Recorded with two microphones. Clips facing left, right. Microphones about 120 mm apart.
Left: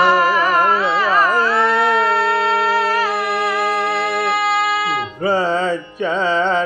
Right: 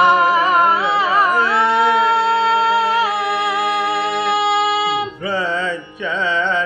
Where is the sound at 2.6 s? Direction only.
25° right (ahead or behind).